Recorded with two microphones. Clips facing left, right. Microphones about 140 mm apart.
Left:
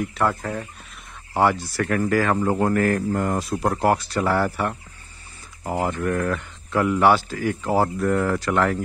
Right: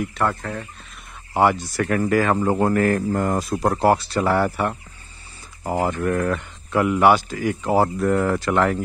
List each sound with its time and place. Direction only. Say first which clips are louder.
0.0 s speech: even; centre (ahead or behind)
1.3 s speech: right 2 dB; 15° right (ahead or behind)
3.1 s speech: right 2 dB; 45° right (ahead or behind); by 4.7 s 20° right (ahead or behind)
5.6 s speech: right 2 dB; 35° right (ahead or behind)